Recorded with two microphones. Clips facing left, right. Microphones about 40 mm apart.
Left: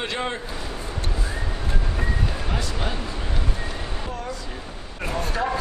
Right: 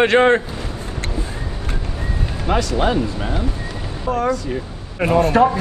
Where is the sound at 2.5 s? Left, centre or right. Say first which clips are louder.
Right 10 dB; right.